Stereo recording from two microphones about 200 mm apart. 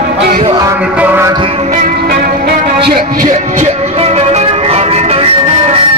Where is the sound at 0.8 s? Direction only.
5° right (ahead or behind).